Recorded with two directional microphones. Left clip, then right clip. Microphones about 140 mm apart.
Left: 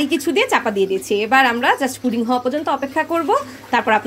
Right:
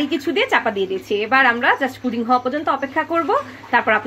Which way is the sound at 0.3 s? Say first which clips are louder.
Even; 60° left (ahead or behind).